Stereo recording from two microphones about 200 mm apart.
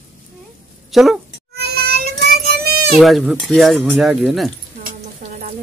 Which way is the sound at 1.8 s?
55° right (ahead or behind).